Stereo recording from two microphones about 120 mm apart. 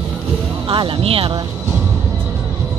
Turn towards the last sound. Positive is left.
turn(degrees=-50)  # may be behind; listen again after turning